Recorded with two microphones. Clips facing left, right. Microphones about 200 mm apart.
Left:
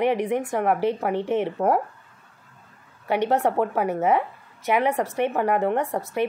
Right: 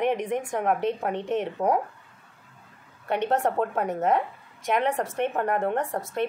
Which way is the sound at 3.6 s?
5° left (ahead or behind).